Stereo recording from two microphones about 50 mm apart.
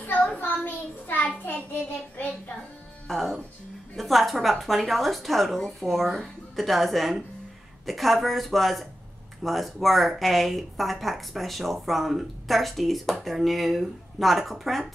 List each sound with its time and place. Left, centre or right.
0.4 s child singing: left
1.1 s a sound: left
3.1 s speech: centre